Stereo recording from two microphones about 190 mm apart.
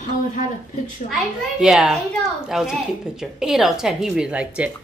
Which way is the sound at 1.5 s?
Centre (ahead or behind).